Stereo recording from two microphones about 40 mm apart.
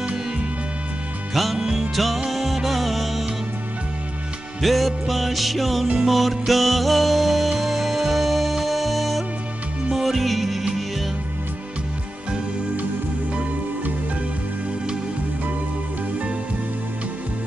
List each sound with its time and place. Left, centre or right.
1.3 s music: centre
1.6 s music: right
2.3 s music: centre
4.6 s music: centre